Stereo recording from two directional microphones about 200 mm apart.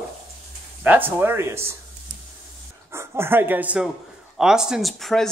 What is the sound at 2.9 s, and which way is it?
Speech, 10° right (ahead or behind).